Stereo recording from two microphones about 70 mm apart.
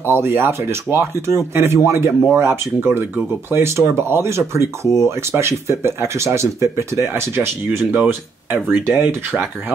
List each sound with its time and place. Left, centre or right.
0.0 s speech: right
7.9 s speech: right